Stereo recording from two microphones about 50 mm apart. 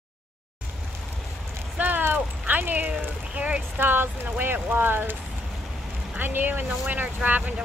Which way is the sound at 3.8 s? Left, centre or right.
Right.